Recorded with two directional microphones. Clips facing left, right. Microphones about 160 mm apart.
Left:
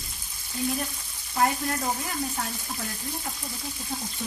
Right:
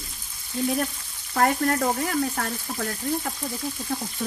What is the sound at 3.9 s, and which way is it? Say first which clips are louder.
Frying: right 5 dB; 55° right (ahead or behind).